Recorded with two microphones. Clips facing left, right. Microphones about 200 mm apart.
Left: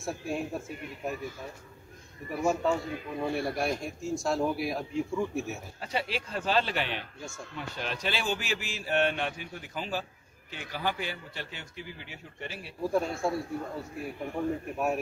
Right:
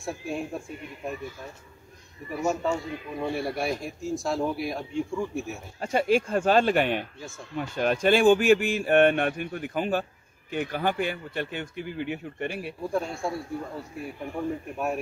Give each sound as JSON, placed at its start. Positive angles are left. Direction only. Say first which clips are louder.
{"t": 0.0, "sound": "speech", "louder": "right 1 dB", "side_deg": 0}
{"t": 2.6, "sound": "speech", "louder": "even", "side_deg": 0}
{"t": 5.8, "sound": "speech", "louder": "right 12 dB", "side_deg": -50}
{"t": 7.2, "sound": "speech", "louder": "right 1 dB", "side_deg": 0}
{"t": 7.5, "sound": "speech", "louder": "right 11 dB", "side_deg": -50}
{"t": 12.8, "sound": "speech", "louder": "left 2 dB", "side_deg": 0}